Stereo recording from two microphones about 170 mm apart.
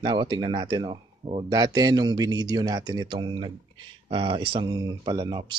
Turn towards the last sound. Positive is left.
turn(degrees=-25)  # may be behind; listen again after turning